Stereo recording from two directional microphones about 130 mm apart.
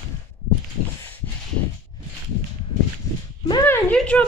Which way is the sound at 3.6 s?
10° left (ahead or behind).